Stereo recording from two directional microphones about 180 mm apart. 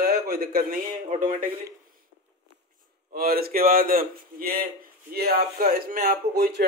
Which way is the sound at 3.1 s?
55° right (ahead or behind).